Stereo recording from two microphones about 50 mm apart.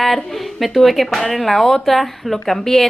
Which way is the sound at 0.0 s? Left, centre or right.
Centre.